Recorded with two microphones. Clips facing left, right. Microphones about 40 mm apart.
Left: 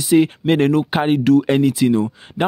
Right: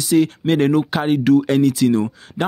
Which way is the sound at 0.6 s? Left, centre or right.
Centre.